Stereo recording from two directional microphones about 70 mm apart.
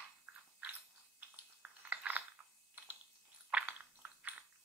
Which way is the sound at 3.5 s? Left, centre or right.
Centre.